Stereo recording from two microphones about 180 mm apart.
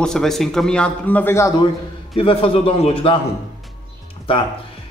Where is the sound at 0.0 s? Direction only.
Centre (ahead or behind).